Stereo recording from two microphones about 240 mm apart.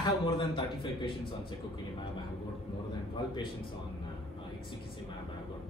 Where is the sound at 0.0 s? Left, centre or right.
Centre.